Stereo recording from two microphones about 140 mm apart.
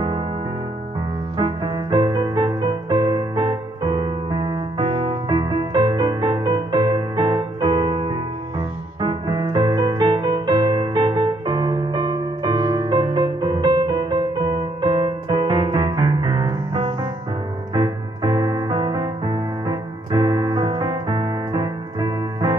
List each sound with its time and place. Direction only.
1.4 s music: 35° right (ahead or behind)